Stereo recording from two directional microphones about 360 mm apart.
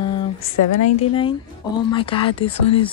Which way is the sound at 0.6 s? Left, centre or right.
Left.